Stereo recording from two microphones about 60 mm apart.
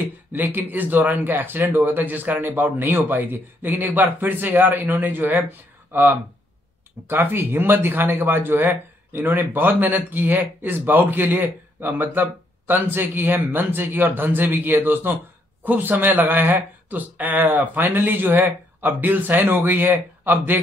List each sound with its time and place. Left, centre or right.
0.0 s speech: right